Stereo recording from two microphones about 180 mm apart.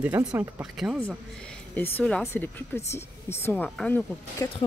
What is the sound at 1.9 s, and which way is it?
Speech, 10° left (ahead or behind).